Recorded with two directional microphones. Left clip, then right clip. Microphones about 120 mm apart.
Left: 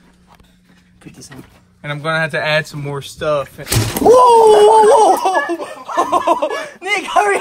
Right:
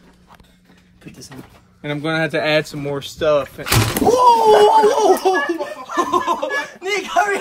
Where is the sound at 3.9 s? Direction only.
20° left (ahead or behind).